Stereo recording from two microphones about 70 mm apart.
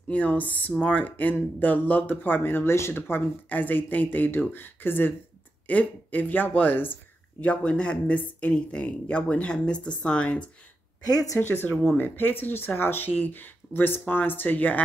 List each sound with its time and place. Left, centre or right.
0.1 s speech: left
11.3 s speech: left